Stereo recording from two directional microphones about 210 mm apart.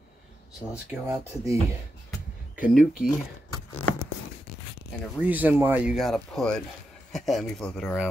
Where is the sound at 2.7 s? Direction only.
Centre (ahead or behind).